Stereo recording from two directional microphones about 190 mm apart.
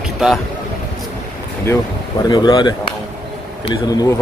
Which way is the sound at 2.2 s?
20° left (ahead or behind).